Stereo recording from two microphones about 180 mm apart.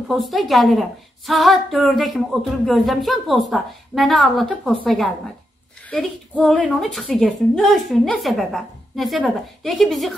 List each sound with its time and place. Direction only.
0.1 s a woman's voice: centre (ahead or behind)